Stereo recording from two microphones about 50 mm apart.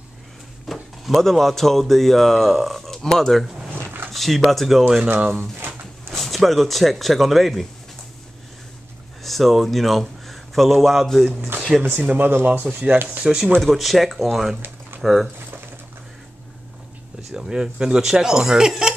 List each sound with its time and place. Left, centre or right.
0.7 s a sound: centre
1.0 s speech: centre
5.3 s speech: right
6.1 s speech: centre
9.2 s a man's voice: centre
11.5 s a sound: right
12.0 s speech: right
12.3 s speech: right
13.2 s speech: centre
13.6 s speech: centre
14.9 s a sound: right
17.3 s speech: centre